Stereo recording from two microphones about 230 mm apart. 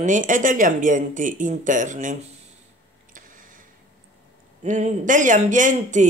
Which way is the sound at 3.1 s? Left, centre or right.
Right.